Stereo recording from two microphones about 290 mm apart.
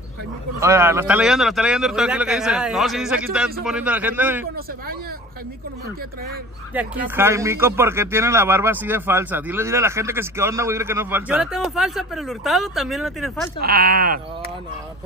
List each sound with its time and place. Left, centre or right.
0.6 s speech: centre
6.7 s speech: centre
13.6 s speech: right